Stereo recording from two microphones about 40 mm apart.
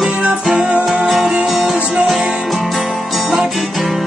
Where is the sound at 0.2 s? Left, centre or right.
Right.